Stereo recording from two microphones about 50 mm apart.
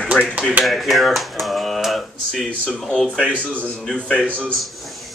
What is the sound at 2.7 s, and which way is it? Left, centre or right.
Speech, centre.